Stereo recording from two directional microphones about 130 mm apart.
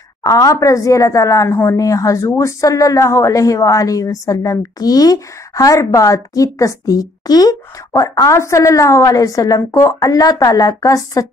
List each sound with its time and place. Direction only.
0.2 s a woman's voice: 25° left (ahead or behind)